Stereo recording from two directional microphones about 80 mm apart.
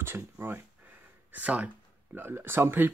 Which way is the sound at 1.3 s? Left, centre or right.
Centre.